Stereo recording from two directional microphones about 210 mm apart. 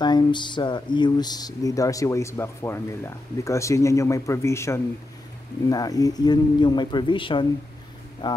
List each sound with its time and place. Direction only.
0.0 s speech: 20° left (ahead or behind)